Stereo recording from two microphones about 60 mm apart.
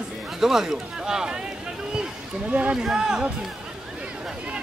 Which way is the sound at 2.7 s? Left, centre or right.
Centre.